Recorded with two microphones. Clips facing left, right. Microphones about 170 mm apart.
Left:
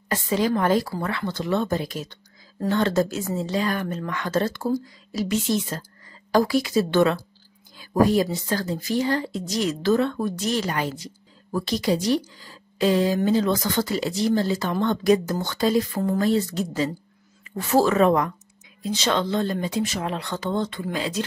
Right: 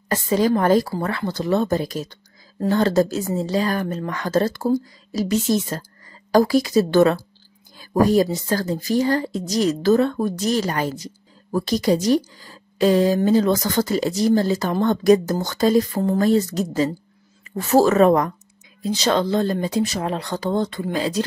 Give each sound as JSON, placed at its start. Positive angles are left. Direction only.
{"t": 0.1, "sound": "a woman's voice", "side_deg": -40}